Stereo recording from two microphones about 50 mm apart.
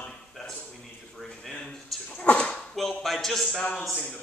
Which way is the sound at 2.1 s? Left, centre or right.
Left.